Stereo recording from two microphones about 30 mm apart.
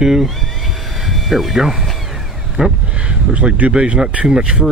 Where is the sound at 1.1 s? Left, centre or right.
Centre.